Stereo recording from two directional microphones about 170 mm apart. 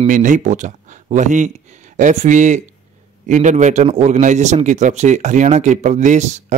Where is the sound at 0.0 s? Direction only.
45° right (ahead or behind).